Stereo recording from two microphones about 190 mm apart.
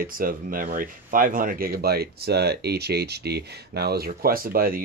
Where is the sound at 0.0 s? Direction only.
50° right (ahead or behind).